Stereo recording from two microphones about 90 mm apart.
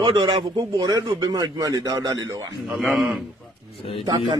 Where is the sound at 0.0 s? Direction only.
75° right (ahead or behind).